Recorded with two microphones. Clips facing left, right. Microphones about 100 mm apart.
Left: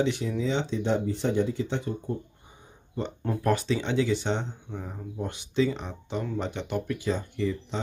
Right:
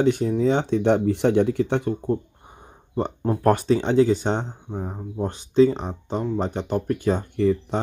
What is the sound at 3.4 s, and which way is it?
Speech, 50° right (ahead or behind).